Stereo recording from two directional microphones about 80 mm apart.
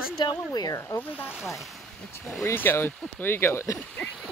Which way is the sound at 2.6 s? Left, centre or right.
Left.